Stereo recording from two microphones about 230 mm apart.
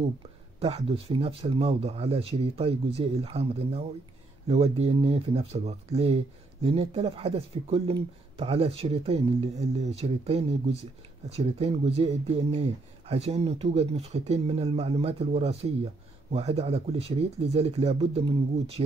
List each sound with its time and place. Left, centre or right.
0.6 s speech: right